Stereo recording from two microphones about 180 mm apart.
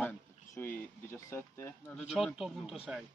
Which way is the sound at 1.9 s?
Centre (ahead or behind).